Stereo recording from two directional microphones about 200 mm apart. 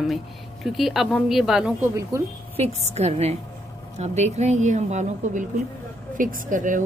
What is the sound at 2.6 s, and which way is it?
A woman's voice, 30° right (ahead or behind).